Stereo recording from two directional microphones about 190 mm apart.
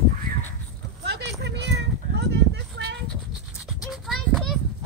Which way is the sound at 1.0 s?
60° right (ahead or behind).